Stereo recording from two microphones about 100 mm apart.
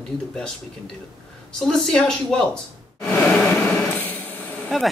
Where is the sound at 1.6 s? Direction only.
5° left (ahead or behind).